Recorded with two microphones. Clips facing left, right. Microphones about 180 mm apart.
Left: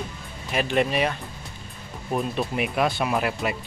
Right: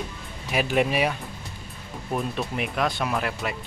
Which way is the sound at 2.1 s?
5° left (ahead or behind).